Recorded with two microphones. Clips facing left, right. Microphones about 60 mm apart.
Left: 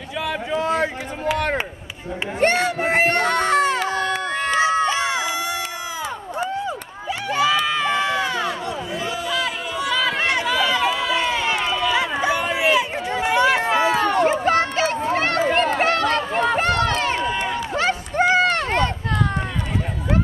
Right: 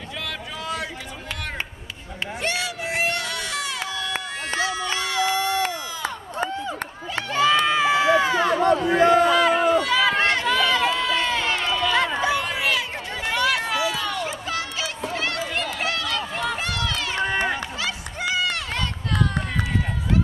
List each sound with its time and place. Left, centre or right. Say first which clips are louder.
0.5 s a sound: left 11 dB; left
2.4 s a sound: left 10 dB; left
4.6 s run: left 6 dB; left
7.2 s crowd: left 1 dB; centre
7.6 s run: right 2 dB; centre
8.5 s a sound: right 7 dB; right
9.5 s run: right 10 dB; right
10.1 s run: even; centre; by 17.2 s left
17.2 s run: even; right
17.7 s run: left 9 dB; left